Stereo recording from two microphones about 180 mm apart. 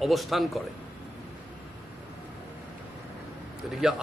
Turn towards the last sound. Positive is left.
turn(degrees=-5)  # may be behind; listen again after turning